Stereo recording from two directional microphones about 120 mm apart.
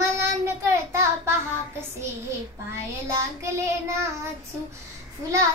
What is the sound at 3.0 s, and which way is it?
Child singing, 25° right (ahead or behind).